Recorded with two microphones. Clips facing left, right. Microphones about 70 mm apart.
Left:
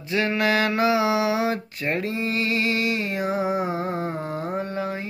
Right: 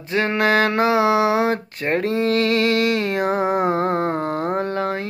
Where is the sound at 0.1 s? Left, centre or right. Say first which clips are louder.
Right 4 dB; right.